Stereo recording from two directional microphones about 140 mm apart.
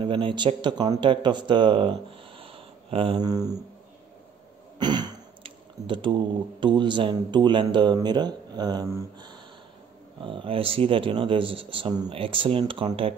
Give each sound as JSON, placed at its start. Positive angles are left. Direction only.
{"t": 0.0, "sound": "speech", "side_deg": -35}
{"t": 3.2, "sound": "speech", "side_deg": -25}
{"t": 4.7, "sound": "speech", "side_deg": -30}
{"t": 10.2, "sound": "a man's voice", "side_deg": -40}